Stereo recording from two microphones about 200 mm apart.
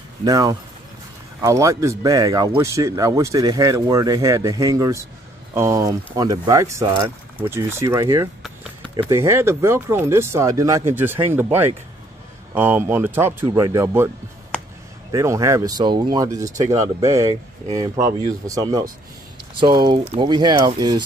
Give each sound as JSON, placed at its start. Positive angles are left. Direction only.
{"t": 0.2, "sound": "speech", "side_deg": -20}